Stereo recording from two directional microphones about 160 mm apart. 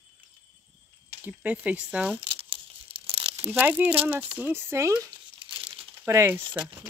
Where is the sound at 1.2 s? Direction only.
10° right (ahead or behind).